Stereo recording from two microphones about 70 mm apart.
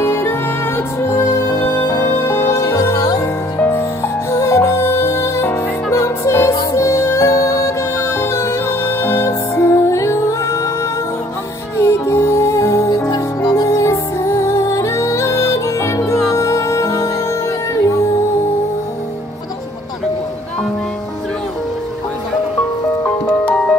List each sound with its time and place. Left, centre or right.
0.0 s music: left
2.5 s music: left
3.0 s music: left
3.5 s music: left
4.3 s music: left
11.8 s music: left